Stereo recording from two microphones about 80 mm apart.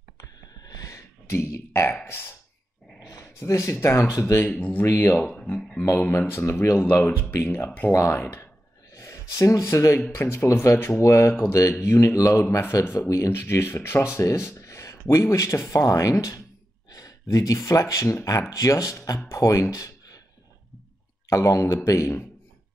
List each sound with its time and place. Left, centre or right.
0.2 s a sound: left
1.3 s speech: left
3.1 s dog: left
3.7 s speech: left
4.8 s speech: left
5.1 s speech: centre
5.8 s speech: left
6.8 s speech: left
21.3 s speech: left